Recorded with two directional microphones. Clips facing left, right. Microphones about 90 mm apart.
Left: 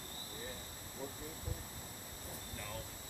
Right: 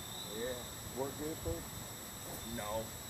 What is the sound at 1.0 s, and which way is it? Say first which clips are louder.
Speech: right 7 dB; 35° right (ahead or behind).